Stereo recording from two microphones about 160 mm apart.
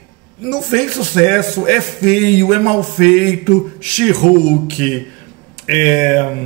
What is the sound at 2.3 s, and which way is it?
A man's voice, 5° left (ahead or behind).